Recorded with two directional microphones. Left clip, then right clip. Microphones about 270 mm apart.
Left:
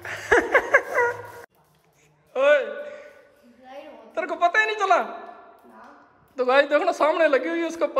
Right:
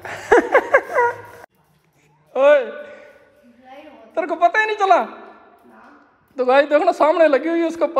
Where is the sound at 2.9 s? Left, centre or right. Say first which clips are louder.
Left 1 dB; left.